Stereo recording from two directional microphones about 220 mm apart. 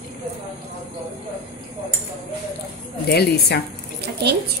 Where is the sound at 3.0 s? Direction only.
45° left (ahead or behind).